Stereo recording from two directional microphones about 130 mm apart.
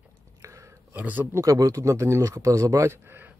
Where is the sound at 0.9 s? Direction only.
15° right (ahead or behind).